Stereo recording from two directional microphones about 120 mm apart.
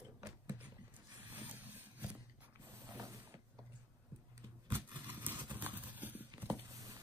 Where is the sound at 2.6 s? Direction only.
20° right (ahead or behind).